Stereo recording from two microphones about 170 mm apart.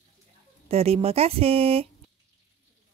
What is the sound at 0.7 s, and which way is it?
Speech, 35° right (ahead or behind).